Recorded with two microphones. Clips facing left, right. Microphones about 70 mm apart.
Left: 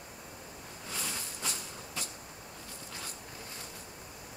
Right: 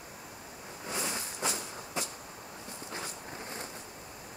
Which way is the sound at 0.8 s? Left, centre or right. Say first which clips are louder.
Right 5 dB; right.